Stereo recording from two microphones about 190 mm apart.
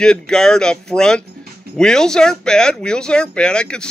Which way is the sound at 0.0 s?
5° left (ahead or behind).